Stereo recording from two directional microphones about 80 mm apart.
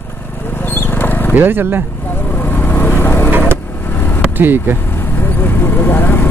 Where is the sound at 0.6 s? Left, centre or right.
Left.